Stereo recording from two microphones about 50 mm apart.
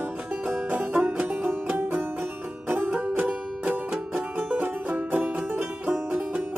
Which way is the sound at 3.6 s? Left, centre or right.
Centre.